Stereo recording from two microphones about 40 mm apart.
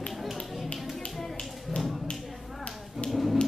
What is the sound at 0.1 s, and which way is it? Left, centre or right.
Music, centre.